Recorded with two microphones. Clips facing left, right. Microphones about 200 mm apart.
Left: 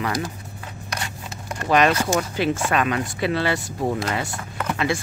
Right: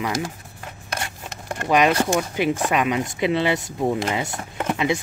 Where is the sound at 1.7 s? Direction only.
10° right (ahead or behind).